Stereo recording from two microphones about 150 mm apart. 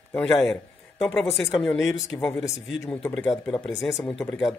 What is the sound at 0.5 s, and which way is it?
Speech, 5° left (ahead or behind).